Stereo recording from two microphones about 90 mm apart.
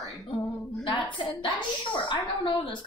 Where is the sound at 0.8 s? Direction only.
65° left (ahead or behind).